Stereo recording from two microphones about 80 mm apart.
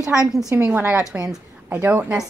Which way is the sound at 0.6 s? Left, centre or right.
Right.